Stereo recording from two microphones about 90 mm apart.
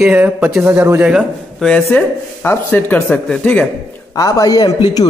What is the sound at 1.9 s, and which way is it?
Speech, 25° left (ahead or behind).